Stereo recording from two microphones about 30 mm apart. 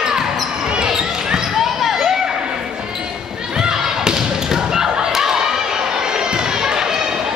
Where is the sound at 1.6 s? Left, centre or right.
Centre.